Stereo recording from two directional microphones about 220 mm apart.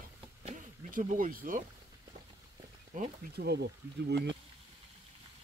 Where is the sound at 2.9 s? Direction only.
45° right (ahead or behind).